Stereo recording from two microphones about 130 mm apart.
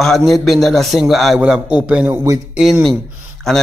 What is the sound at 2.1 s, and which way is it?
Speech, 20° right (ahead or behind).